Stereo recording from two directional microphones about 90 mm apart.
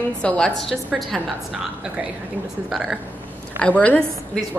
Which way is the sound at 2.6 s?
5° right (ahead or behind).